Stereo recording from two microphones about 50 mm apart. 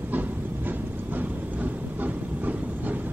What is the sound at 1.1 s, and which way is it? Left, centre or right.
Train, right.